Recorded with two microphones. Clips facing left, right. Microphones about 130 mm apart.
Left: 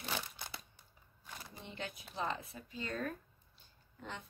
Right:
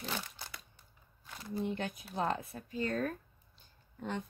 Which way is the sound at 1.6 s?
50° right (ahead or behind).